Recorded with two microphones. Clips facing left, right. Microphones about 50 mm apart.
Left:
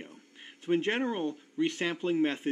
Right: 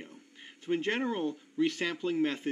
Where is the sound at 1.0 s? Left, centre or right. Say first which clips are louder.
Left 1 dB; centre.